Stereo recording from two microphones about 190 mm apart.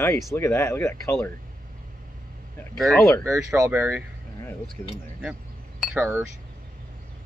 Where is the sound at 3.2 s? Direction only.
15° right (ahead or behind).